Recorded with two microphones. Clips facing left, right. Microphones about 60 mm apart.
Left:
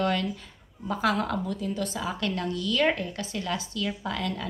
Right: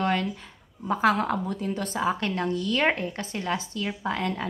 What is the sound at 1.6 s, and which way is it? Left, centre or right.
A woman's voice, right.